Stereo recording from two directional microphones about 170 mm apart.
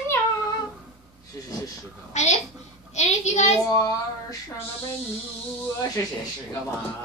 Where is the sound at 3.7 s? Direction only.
20° left (ahead or behind).